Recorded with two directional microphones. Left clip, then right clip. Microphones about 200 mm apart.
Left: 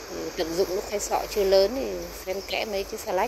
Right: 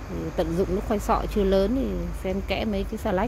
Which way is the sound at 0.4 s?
15° right (ahead or behind).